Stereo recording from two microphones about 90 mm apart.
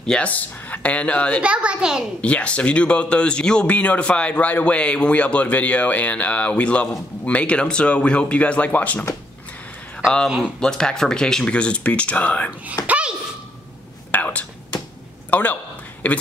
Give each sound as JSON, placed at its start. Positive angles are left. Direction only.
{"t": 0.0, "sound": "speech", "side_deg": 10}
{"t": 1.4, "sound": "a child's voice", "side_deg": -15}
{"t": 2.2, "sound": "speech", "side_deg": 15}
{"t": 10.0, "sound": "speech", "side_deg": 0}
{"t": 12.8, "sound": "a sound", "side_deg": -15}
{"t": 14.1, "sound": "a sound", "side_deg": 15}
{"t": 15.3, "sound": "a man's voice", "side_deg": 20}